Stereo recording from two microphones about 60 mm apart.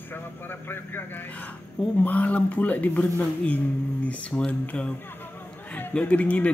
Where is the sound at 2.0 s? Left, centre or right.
Left.